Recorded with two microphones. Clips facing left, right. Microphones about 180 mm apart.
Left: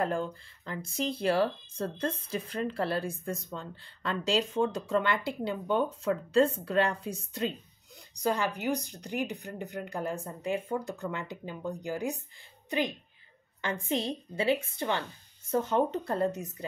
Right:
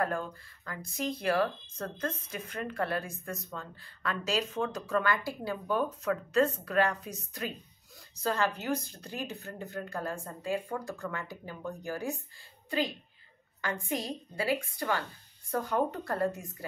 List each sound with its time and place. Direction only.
0.0 s speech: 25° left (ahead or behind)
8.1 s a woman's voice: 15° left (ahead or behind)